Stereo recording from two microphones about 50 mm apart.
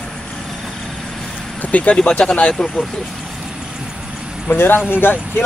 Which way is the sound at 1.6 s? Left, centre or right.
Left.